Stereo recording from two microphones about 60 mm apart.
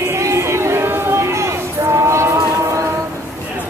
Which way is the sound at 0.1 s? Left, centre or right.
Right.